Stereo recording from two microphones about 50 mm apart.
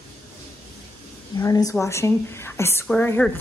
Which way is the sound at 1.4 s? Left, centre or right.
Left.